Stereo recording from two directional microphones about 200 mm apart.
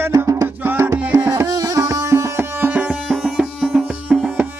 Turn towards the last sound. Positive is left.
turn(degrees=-5)  # may be behind; listen again after turning